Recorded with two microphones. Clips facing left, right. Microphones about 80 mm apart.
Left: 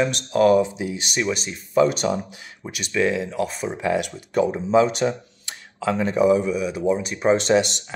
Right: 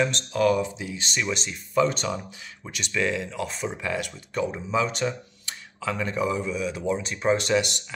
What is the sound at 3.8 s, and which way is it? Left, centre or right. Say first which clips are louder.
Speech: left 7 dB; left.